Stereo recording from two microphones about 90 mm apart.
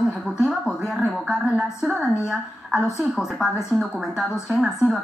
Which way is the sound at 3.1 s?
5° right (ahead or behind).